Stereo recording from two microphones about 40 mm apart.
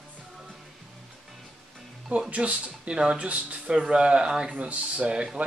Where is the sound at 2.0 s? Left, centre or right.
Right.